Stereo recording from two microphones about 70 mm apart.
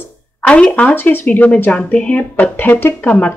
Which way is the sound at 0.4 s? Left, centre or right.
Centre.